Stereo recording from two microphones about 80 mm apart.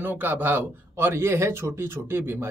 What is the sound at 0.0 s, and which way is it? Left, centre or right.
A man's voice, right.